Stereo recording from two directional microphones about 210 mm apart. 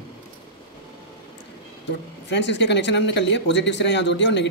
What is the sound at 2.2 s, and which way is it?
Speech, 55° left (ahead or behind).